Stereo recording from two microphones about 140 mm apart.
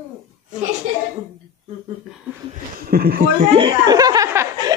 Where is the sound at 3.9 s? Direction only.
25° right (ahead or behind).